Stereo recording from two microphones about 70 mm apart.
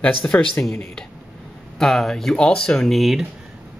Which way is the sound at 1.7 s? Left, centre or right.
Centre.